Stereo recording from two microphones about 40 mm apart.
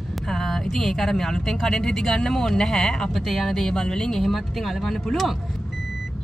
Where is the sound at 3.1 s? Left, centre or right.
Centre.